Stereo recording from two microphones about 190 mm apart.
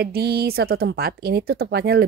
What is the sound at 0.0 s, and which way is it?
A woman's voice, 55° right (ahead or behind).